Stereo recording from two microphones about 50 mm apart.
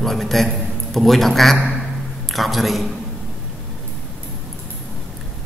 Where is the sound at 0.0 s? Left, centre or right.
Centre.